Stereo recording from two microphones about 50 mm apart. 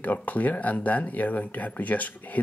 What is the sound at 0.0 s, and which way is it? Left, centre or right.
Speech, left.